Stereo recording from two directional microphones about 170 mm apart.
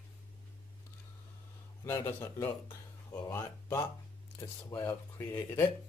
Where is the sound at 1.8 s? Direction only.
15° left (ahead or behind).